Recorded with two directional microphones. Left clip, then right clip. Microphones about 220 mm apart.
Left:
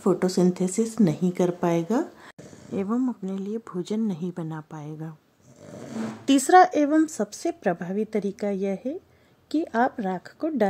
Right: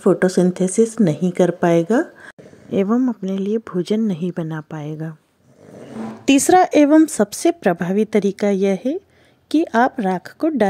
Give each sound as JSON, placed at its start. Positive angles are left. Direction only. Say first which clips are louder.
{"t": 0.0, "sound": "a woman's voice", "louder": "right 7 dB", "side_deg": -15}
{"t": 6.2, "sound": "a woman's voice", "louder": "right 3 dB", "side_deg": -30}